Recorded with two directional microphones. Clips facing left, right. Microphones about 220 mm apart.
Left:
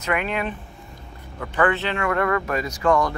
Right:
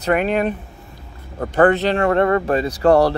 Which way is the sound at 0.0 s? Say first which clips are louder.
Right 7 dB; 40° right (ahead or behind).